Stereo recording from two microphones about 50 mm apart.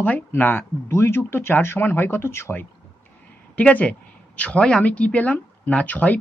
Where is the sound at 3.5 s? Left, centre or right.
Left.